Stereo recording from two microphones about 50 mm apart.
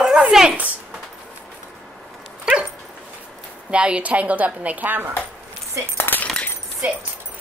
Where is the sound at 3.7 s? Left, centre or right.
Right.